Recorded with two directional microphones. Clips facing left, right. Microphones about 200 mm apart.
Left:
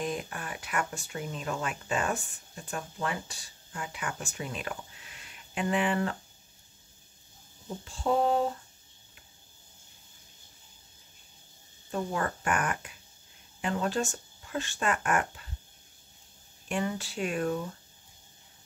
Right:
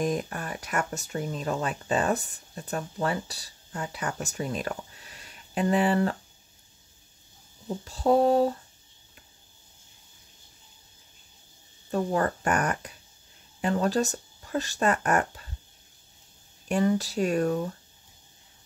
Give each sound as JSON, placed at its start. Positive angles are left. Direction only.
{"t": 0.0, "sound": "speech", "side_deg": -40}
{"t": 7.8, "sound": "speech", "side_deg": -40}
{"t": 11.9, "sound": "speech", "side_deg": -40}
{"t": 16.6, "sound": "speech", "side_deg": -40}